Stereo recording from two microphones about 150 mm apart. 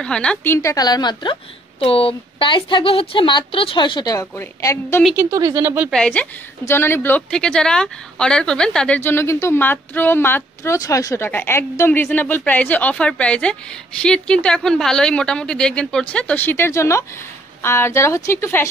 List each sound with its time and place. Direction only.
0.0 s a woman's voice: 5° left (ahead or behind)
5.1 s speech: 25° right (ahead or behind)
5.9 s a woman's voice: 5° left (ahead or behind)